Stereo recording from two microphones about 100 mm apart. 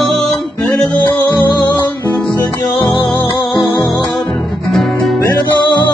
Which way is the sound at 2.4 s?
35° left (ahead or behind).